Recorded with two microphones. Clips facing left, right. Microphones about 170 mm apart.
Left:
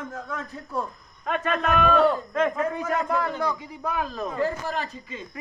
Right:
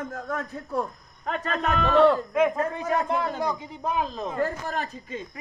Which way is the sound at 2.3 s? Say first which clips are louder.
Right 1 dB; 15° right (ahead or behind).